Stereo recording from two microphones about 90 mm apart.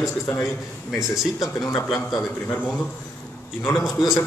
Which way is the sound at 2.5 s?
20° left (ahead or behind).